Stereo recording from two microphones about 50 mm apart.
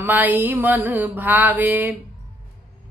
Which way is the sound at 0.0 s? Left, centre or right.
Right.